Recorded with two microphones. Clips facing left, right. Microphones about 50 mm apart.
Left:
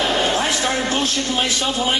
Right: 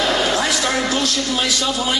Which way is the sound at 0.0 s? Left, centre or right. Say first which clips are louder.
Right 1 dB; left.